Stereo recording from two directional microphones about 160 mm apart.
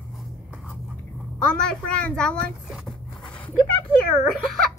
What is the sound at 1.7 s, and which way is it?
A child's voice, 5° left (ahead or behind).